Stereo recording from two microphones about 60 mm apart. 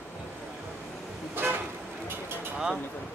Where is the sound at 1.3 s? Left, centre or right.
Right.